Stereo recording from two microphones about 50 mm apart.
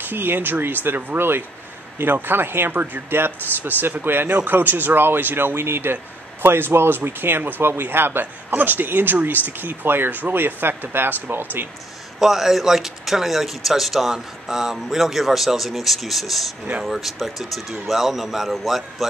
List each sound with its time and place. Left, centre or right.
0.0 s speech: right
8.5 s speech: right
12.2 s speech: centre